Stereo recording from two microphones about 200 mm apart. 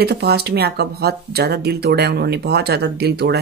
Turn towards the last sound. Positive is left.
turn(degrees=-55)  # may be behind; listen again after turning